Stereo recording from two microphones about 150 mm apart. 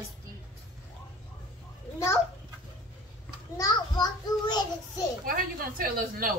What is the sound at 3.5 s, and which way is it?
A child's voice, 25° left (ahead or behind).